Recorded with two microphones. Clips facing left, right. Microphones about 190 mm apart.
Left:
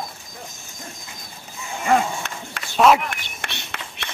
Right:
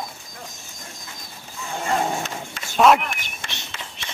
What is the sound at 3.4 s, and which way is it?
Run, 65° left (ahead or behind).